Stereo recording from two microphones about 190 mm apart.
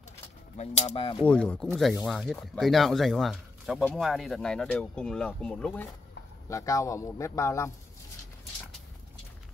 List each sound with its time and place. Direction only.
0.6 s speech: 35° left (ahead or behind)
1.2 s speech: 5° left (ahead or behind)
6.5 s speech: 15° left (ahead or behind)